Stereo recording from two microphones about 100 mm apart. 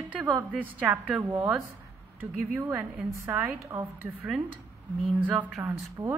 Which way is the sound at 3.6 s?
25° right (ahead or behind).